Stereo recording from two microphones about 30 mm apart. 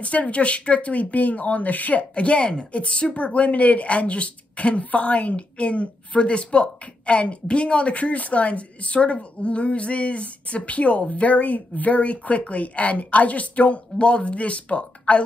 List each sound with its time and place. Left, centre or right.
0.0 s a woman's voice: left
2.1 s speech: left
3.3 s a woman's voice: left
7.9 s a woman's voice: left